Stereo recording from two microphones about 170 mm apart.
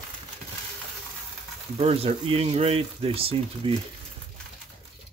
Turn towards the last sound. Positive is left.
turn(degrees=-35)  # may be behind; listen again after turning